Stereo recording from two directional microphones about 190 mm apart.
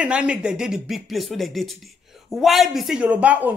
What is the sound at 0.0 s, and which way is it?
Speech, 5° right (ahead or behind).